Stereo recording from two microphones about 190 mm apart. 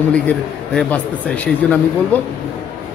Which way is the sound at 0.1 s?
5° left (ahead or behind).